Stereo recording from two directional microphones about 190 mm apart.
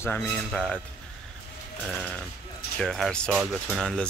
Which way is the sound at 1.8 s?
5° left (ahead or behind).